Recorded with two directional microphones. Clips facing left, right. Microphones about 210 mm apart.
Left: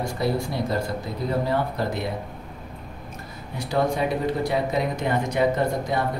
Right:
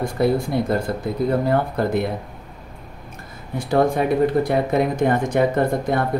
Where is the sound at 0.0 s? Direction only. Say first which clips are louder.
Right 5 dB; 55° right (ahead or behind).